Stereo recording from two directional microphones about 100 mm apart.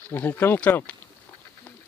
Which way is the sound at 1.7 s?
15° left (ahead or behind).